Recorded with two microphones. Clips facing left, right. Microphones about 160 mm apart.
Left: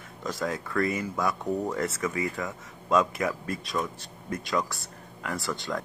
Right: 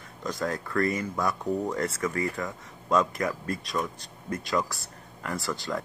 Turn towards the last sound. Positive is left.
turn(degrees=0)  # may be behind; listen again after turning